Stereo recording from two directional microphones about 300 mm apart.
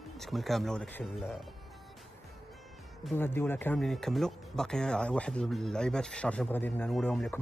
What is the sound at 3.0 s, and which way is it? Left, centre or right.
Speech, centre.